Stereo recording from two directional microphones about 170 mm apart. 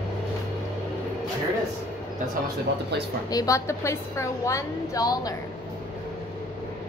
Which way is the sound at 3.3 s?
20° left (ahead or behind).